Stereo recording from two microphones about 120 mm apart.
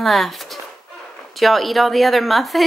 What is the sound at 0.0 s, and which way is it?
Speech, centre (ahead or behind).